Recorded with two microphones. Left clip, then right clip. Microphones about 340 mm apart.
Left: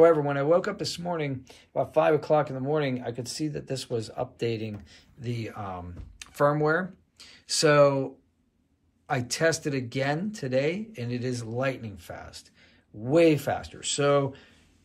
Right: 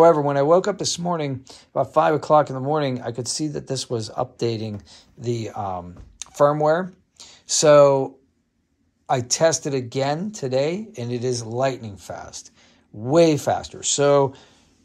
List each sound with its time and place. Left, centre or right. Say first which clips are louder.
0.0 s speech: right 5 dB; centre